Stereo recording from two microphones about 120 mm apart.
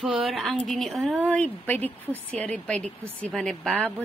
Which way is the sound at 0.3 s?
Centre (ahead or behind).